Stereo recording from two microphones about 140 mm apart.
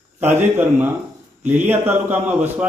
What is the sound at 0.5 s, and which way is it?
A man's voice, 15° right (ahead or behind).